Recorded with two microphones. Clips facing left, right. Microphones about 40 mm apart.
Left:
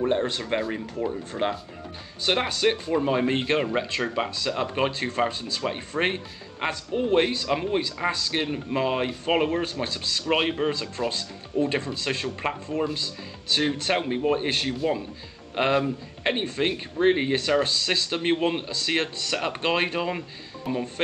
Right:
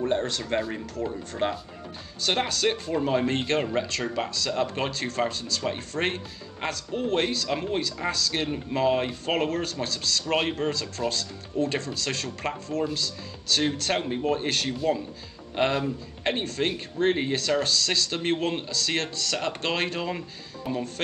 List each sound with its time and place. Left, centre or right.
0.0 s speech: centre